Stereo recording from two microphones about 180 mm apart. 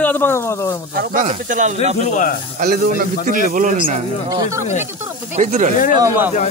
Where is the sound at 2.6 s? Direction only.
55° right (ahead or behind).